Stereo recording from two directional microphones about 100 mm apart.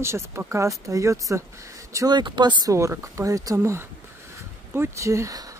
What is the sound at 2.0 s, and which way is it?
Speech, 50° right (ahead or behind).